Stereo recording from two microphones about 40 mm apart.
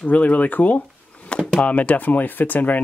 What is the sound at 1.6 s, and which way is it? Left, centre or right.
Speech, left.